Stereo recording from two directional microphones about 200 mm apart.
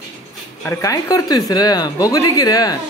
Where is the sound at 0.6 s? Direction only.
15° left (ahead or behind).